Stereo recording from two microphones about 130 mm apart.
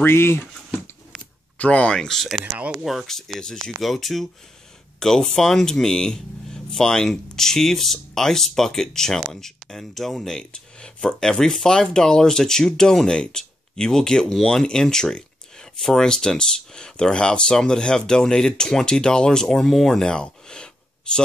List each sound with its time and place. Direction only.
0.0 s speech: 20° left (ahead or behind)
1.6 s speech: 10° left (ahead or behind)